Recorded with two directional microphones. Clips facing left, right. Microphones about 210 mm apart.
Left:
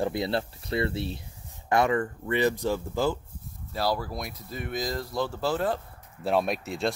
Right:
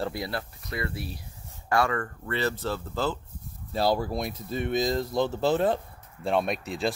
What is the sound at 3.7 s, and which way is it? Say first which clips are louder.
Speech: right 3 dB; 25° right (ahead or behind).